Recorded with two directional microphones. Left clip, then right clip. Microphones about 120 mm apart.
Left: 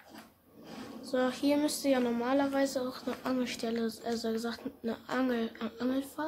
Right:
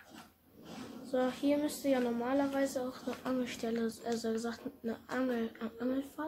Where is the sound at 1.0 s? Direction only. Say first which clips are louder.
Left 2 dB; 25° left (ahead or behind).